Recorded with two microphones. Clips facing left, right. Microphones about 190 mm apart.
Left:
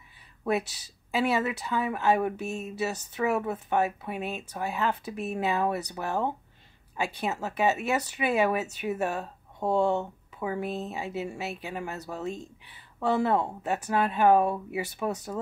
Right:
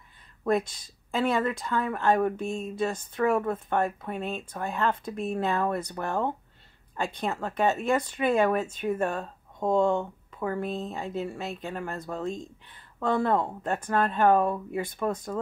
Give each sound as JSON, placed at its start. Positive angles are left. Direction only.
{"t": 0.4, "sound": "speech", "side_deg": 5}
{"t": 0.7, "sound": "speech", "side_deg": 75}
{"t": 1.1, "sound": "speech", "side_deg": 5}